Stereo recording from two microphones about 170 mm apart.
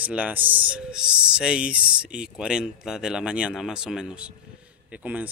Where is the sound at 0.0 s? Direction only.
10° right (ahead or behind).